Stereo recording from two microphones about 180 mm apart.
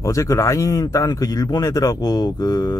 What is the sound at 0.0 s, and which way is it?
A man's voice, 20° left (ahead or behind).